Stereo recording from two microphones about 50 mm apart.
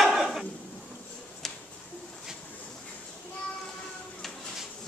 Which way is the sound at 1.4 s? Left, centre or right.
Centre.